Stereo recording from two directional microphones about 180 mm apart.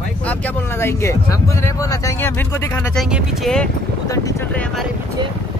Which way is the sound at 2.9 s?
Centre (ahead or behind).